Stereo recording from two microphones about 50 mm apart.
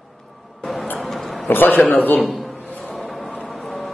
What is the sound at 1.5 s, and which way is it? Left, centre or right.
Speech, left.